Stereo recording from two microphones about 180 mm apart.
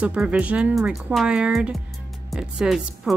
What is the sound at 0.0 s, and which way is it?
A woman's voice, 5° right (ahead or behind).